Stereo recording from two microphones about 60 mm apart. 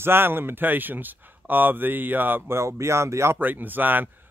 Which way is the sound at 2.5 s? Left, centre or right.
Right.